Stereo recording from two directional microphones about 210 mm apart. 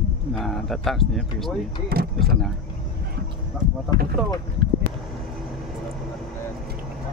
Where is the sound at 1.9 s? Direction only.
45° right (ahead or behind).